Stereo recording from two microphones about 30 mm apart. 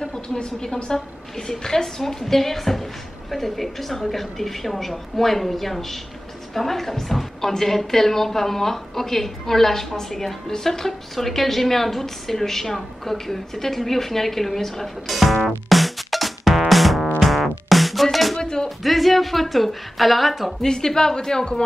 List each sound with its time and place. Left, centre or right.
0.1 s a woman's voice: left
0.9 s a woman's voice: centre
15.4 s music: centre
18.4 s music: left
18.8 s a sound: centre
19.5 s speech: centre
20.6 s speech: centre